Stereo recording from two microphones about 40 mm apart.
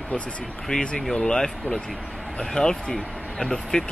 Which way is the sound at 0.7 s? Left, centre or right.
Left.